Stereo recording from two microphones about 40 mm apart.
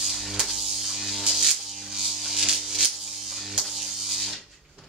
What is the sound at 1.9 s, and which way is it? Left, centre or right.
Electric shaver, centre.